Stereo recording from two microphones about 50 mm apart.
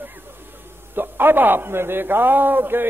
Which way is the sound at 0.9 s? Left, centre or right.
Right.